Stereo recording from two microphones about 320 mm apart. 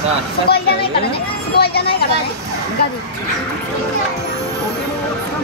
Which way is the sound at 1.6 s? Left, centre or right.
Left.